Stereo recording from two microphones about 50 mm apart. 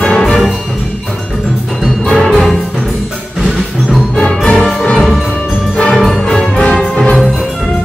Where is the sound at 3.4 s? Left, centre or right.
Centre.